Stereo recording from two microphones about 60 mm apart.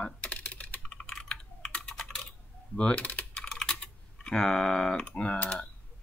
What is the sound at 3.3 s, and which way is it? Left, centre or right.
Typing, centre.